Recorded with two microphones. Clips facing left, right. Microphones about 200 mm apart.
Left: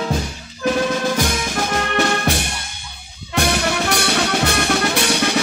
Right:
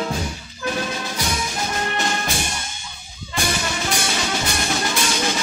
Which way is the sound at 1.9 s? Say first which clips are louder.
Left 6 dB; 60° left (ahead or behind).